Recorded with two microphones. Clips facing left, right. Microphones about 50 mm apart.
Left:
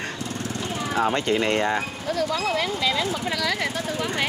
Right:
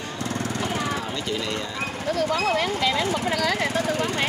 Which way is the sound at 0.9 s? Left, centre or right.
Left.